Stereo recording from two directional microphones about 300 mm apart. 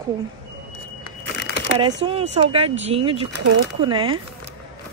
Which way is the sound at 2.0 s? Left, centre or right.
Centre.